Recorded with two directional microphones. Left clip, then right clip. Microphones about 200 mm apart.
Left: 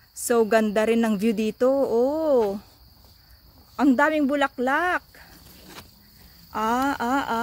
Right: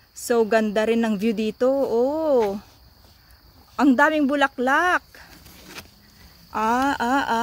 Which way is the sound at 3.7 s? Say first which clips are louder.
Right 2 dB; 10° right (ahead or behind).